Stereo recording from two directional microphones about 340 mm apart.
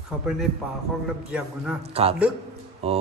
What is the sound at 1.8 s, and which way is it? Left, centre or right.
A man's voice, centre.